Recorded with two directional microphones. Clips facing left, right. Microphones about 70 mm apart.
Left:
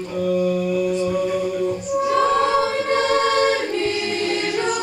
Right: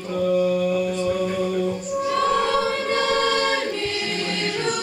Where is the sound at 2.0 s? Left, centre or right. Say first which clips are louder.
Left 3 dB; left.